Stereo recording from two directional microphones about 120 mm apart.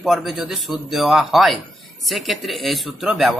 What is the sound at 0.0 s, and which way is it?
Speech, centre (ahead or behind).